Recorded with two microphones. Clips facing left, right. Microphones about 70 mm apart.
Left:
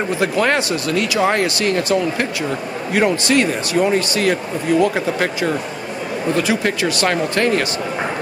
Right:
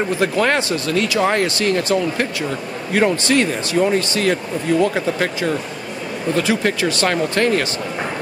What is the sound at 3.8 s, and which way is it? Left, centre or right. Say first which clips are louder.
Speech: even; centre.